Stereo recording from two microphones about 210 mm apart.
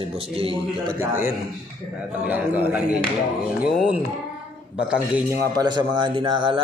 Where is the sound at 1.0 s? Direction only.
10° right (ahead or behind).